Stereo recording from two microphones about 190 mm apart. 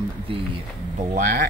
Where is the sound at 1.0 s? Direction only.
45° right (ahead or behind).